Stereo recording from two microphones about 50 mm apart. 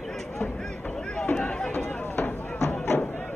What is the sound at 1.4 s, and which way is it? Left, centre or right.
Run, centre.